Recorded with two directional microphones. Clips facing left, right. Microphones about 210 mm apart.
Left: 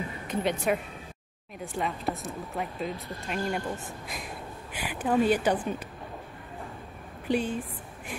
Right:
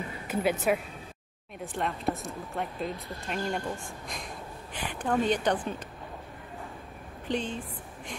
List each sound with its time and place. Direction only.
0.3 s speech: 5° right (ahead or behind)
7.2 s speech: 10° left (ahead or behind)